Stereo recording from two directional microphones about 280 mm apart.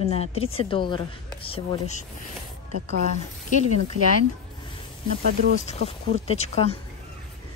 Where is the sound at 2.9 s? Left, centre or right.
Right.